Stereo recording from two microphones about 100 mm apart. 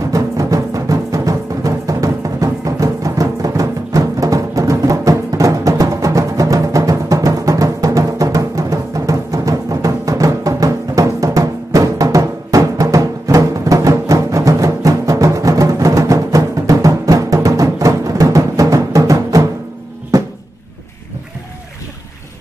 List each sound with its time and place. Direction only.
0.1 s music: 35° right (ahead or behind)
20.1 s cupboard open or close: 35° right (ahead or behind)